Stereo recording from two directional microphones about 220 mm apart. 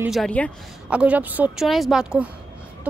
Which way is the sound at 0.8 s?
5° right (ahead or behind).